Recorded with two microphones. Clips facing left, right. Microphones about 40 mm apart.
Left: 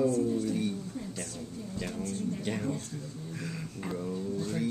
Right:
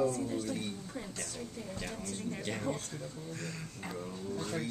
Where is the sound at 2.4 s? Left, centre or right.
Centre.